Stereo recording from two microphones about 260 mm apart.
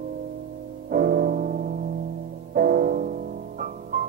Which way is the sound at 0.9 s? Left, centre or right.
Right.